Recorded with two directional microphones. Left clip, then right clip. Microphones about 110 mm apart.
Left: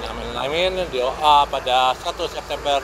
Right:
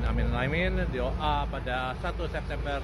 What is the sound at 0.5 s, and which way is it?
Speech, 30° left (ahead or behind).